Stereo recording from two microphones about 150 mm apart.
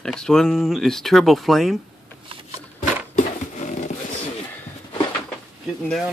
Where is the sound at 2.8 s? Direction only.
55° left (ahead or behind).